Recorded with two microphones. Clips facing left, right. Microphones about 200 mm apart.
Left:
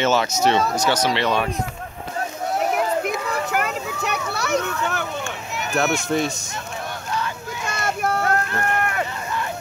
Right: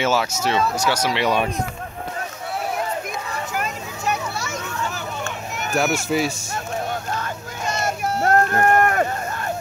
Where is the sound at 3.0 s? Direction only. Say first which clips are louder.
Left 5 dB; 65° left (ahead or behind).